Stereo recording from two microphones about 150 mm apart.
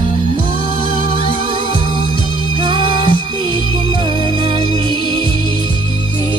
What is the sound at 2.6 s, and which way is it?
Music, 35° right (ahead or behind).